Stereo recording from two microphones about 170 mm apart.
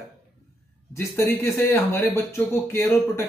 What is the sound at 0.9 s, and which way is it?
Speech, 15° left (ahead or behind).